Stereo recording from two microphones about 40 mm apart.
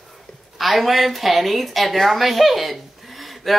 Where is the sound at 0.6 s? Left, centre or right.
Centre.